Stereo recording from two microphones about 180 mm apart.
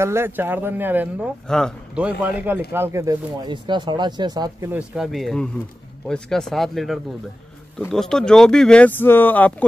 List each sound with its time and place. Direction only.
0.0 s speech: 15° right (ahead or behind)
1.5 s speech: 5° left (ahead or behind)
2.0 s speech: 10° right (ahead or behind); by 9.7 s 10° left (ahead or behind)